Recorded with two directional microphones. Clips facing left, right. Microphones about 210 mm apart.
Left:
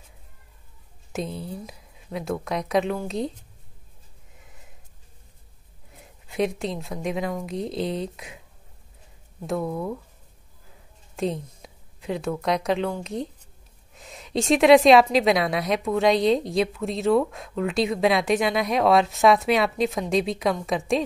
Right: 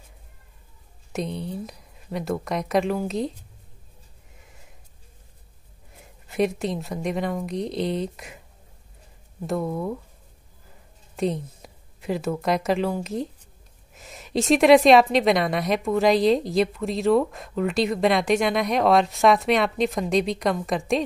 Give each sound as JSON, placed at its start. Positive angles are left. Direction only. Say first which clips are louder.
{"t": 1.1, "sound": "a woman's voice", "louder": "right 2 dB", "side_deg": 0}
{"t": 6.2, "sound": "a woman's voice", "louder": "right 2 dB", "side_deg": 0}
{"t": 9.5, "sound": "a woman's voice", "louder": "right 1 dB", "side_deg": 0}
{"t": 11.1, "sound": "a woman's voice", "louder": "right 2 dB", "side_deg": 0}